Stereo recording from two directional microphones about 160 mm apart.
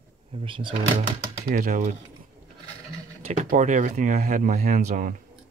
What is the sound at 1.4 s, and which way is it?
Speech, 60° right (ahead or behind).